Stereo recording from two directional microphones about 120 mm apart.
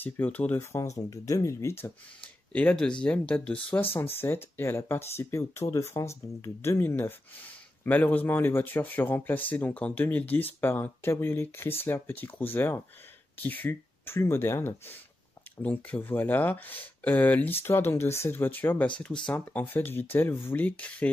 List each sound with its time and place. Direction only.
0.0 s speech: 15° left (ahead or behind)
2.5 s speech: 10° left (ahead or behind)